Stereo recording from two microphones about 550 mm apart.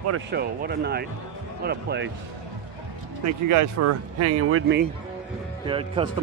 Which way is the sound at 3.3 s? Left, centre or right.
Right.